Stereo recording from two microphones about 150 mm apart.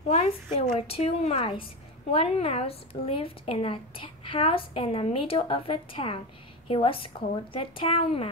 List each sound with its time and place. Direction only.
0.1 s a woman's voice: 45° left (ahead or behind)